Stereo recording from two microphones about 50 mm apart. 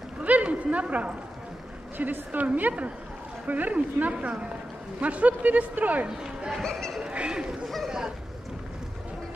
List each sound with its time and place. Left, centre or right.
0.2 s a sound: right
2.0 s a man's voice: right
4.1 s a man's voice: right
6.0 s speech: centre
6.6 s speech: centre
7.0 s speech: centre
7.6 s speech: centre